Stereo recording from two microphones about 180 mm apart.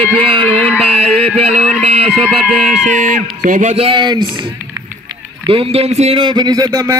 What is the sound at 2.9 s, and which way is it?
A man's voice, 45° right (ahead or behind).